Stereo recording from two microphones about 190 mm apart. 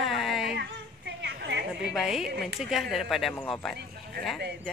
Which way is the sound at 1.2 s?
65° right (ahead or behind).